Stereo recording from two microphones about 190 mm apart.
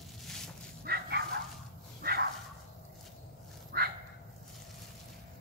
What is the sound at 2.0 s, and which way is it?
Dog, 55° right (ahead or behind).